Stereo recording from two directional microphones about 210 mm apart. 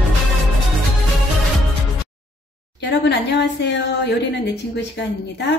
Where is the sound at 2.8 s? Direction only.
55° left (ahead or behind).